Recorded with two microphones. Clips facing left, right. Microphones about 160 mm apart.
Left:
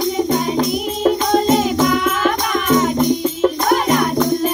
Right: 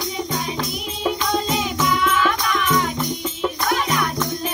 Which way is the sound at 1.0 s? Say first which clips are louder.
Left 7 dB; 45° left (ahead or behind).